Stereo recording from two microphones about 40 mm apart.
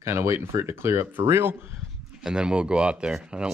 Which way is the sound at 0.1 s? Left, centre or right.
Right.